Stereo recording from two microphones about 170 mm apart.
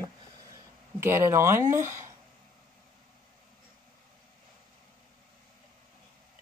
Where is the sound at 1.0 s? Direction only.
15° right (ahead or behind).